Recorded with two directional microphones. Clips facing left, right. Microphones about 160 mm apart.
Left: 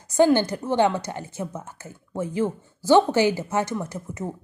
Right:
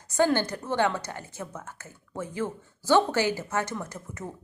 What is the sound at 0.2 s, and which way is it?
Speech, 20° left (ahead or behind).